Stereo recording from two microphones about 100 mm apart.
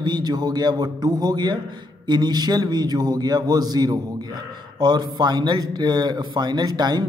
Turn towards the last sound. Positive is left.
turn(degrees=-45)  # may be behind; listen again after turning